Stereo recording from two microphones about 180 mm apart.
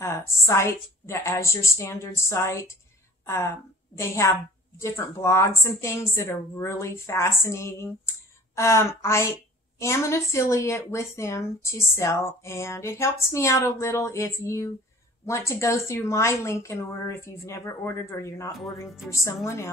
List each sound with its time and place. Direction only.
0.0 s a woman's voice: 15° left (ahead or behind)
18.6 s speech: centre (ahead or behind)
19.0 s a woman's voice: 15° left (ahead or behind)